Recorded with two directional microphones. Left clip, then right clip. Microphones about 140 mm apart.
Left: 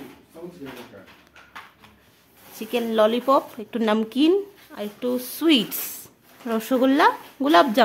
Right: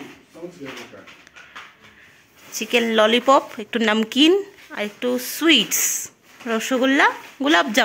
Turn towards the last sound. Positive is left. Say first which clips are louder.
# left 1 dB
turn(degrees=10)  # may be behind; listen again after turning